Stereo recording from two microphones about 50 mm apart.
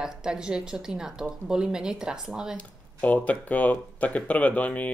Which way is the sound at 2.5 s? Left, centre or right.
Left.